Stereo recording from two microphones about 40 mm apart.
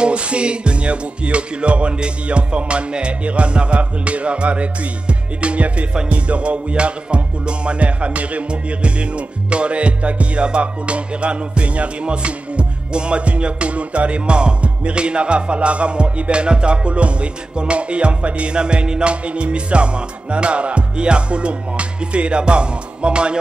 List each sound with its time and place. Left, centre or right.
0.0 s music: right